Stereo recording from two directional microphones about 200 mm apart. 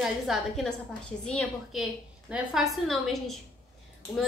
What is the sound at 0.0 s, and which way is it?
A woman's voice, centre (ahead or behind).